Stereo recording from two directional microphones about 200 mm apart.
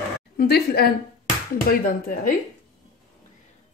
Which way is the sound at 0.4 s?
50° left (ahead or behind).